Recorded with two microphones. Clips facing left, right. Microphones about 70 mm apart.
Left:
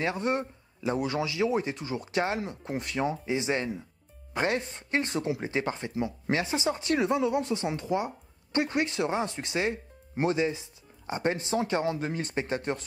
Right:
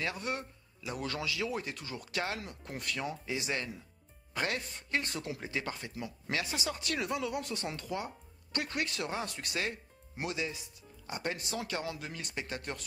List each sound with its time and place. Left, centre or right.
0.0 s speech: left